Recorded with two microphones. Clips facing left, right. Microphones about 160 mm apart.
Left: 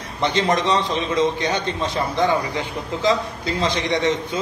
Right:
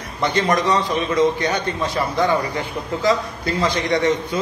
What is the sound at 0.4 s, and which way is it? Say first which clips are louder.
A man's voice: right 1 dB; 20° left (ahead or behind).